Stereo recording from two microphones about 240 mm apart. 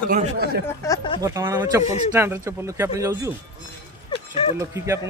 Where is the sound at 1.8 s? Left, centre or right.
Left.